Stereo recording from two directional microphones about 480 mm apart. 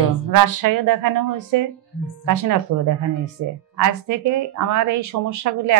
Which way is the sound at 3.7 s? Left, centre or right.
Right.